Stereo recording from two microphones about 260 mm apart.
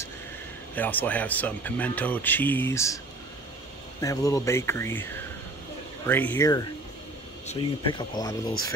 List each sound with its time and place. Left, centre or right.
0.7 s speech: centre
4.0 s speech: centre